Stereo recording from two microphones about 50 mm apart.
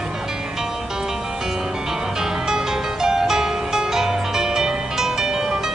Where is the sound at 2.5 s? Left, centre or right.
Centre.